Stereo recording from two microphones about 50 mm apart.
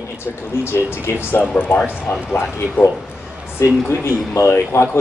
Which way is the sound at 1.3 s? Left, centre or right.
Left.